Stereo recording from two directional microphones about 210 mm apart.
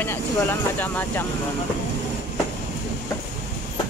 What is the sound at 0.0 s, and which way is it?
Speech, 10° left (ahead or behind).